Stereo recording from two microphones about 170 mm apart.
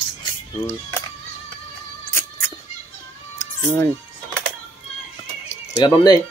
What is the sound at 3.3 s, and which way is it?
Music, 15° left (ahead or behind).